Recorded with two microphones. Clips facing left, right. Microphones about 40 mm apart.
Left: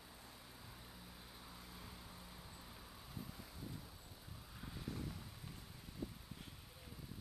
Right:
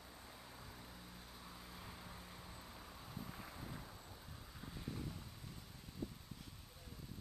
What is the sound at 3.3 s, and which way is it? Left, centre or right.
Vehicle, right.